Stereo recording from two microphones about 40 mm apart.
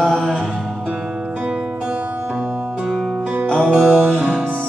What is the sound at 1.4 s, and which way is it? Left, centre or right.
Music, right.